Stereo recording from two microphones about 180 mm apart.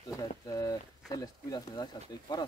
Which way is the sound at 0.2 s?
20° left (ahead or behind).